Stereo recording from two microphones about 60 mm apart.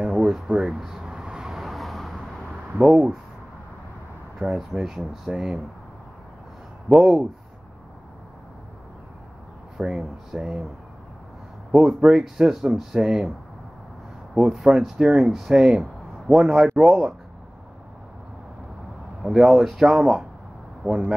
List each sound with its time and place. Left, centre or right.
0.0 s a sound: centre
2.5 s a sound: right
2.9 s speech: centre
4.4 s speech: centre
6.9 s speech: centre
9.8 s speech: centre
11.7 s speech: centre
14.5 s speech: centre
19.2 s speech: centre